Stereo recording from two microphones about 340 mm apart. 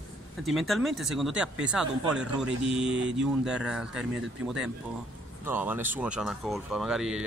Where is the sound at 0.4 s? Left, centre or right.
Centre.